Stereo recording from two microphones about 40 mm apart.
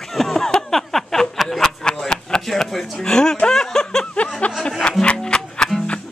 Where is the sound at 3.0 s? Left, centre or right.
Centre.